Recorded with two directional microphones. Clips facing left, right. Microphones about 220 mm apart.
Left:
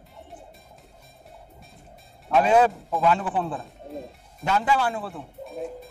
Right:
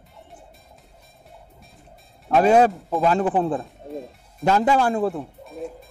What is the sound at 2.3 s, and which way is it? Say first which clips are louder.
Speech: right 3 dB; 40° right (ahead or behind).